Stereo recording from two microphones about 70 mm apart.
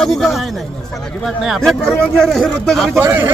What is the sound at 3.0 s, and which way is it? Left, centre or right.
Speech, right.